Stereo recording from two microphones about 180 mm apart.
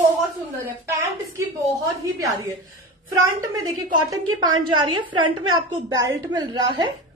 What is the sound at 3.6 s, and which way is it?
A woman's voice, 25° right (ahead or behind).